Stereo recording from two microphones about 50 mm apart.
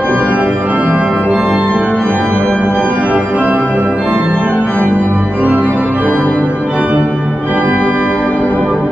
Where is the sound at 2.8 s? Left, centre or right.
Right.